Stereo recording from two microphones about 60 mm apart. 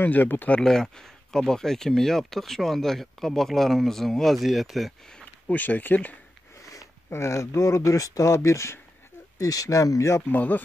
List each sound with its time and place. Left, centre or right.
0.0 s speech: left
0.6 s speech: centre
5.5 s speech: left
6.6 s speech: left
9.4 s speech: left
10.3 s speech: left